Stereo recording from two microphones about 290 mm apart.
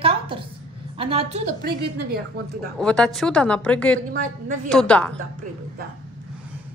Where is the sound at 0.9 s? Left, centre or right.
Centre.